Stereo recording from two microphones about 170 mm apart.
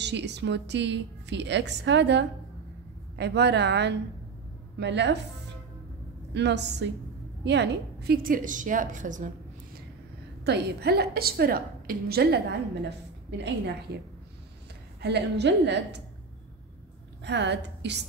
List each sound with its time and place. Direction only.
0.0 s a woman's voice: 90° right
6.3 s a woman's voice: 90° right; by 9.3 s 50° right (ahead or behind)
10.4 s a woman's voice: 75° right (ahead or behind)
13.4 s a woman's voice: 85° right
15.0 s a woman's voice: 80° right
17.2 s a woman's voice: 90° right